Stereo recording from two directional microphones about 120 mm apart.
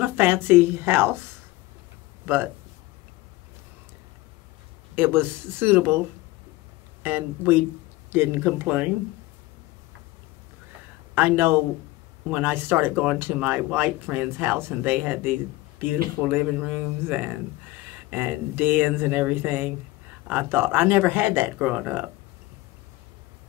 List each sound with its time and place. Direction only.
0.0 s a woman's voice: 20° right (ahead or behind)
4.9 s a woman's voice: 15° right (ahead or behind)
11.1 s a woman's voice: 20° right (ahead or behind)